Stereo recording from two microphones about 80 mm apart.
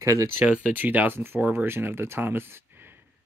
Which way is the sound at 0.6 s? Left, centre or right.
Right.